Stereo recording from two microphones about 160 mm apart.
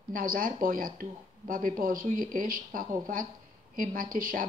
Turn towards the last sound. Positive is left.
turn(degrees=-60)  # may be behind; listen again after turning